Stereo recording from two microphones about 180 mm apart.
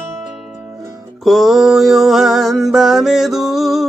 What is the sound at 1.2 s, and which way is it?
Mantra, centre (ahead or behind).